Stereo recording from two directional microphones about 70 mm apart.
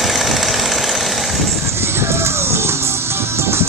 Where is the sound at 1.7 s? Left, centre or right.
Right.